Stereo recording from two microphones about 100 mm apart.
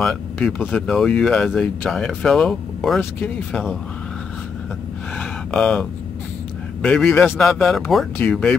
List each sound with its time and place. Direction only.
0.0 s speech: 10° left (ahead or behind)
1.9 s speech: 5° left (ahead or behind)
3.0 s speech: 20° left (ahead or behind)
5.5 s speech: 10° left (ahead or behind)